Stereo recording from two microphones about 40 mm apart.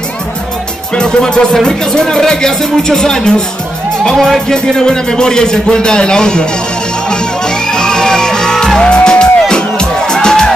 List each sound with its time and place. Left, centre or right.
0.9 s music: left
1.5 s speech: centre
7.1 s music: centre